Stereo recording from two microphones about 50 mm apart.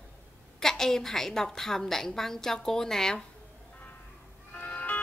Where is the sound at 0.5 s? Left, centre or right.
Centre.